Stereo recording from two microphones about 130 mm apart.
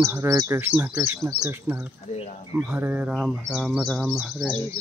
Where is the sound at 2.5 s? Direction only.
15° right (ahead or behind).